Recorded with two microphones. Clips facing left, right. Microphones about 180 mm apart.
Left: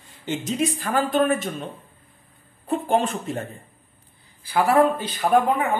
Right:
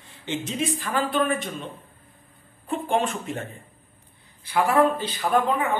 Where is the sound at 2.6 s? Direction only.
40° left (ahead or behind).